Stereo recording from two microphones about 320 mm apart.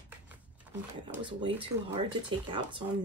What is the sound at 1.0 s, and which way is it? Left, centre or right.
Speech, centre.